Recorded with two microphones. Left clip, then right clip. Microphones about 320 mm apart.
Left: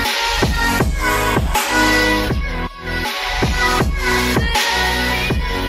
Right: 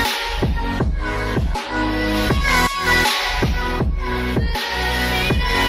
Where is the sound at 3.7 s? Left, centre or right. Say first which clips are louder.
Left 7 dB; left.